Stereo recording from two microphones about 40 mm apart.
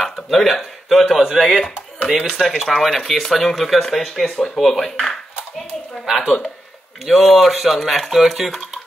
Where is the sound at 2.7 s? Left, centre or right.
Centre.